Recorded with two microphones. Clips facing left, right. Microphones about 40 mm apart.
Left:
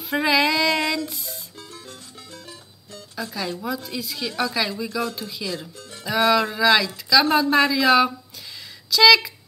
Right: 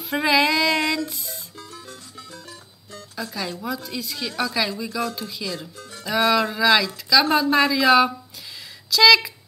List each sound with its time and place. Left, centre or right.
0.0 s female singing: centre
1.6 s music: left
3.2 s a woman's voice: centre